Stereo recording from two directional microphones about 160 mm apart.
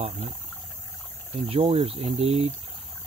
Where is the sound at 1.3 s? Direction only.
35° right (ahead or behind).